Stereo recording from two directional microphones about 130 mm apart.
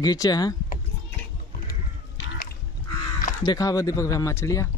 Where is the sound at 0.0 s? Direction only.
30° left (ahead or behind).